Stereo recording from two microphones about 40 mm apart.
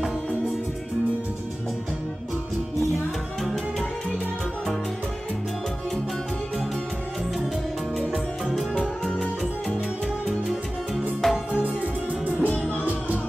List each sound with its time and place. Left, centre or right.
10.2 s music: centre
12.1 s music: right